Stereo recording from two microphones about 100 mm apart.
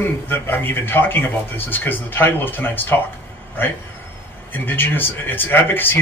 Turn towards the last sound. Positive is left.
turn(degrees=20)  # may be behind; listen again after turning